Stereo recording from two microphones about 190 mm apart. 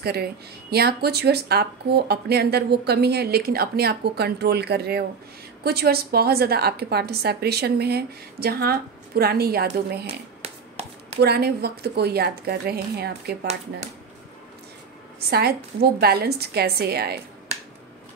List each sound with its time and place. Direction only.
0.0 s speech: 55° right (ahead or behind)
10.0 s a sound: 35° right (ahead or behind)
11.1 s speech: 55° right (ahead or behind)
15.1 s speech: 55° right (ahead or behind)